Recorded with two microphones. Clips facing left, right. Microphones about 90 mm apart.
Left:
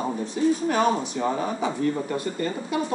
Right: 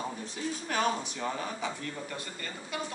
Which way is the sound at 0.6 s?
15° left (ahead or behind).